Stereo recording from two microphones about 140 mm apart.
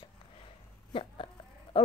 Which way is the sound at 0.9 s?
40° left (ahead or behind).